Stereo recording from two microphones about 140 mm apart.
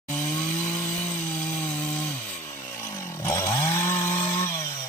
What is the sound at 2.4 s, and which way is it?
Chainsaw, 20° left (ahead or behind).